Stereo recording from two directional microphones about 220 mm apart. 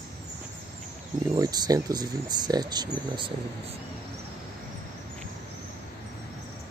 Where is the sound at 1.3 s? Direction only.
15° right (ahead or behind).